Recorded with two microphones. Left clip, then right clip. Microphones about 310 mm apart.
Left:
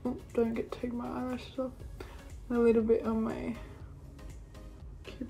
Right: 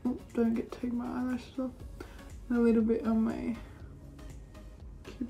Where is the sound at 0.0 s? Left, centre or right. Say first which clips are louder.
Left 1 dB; centre.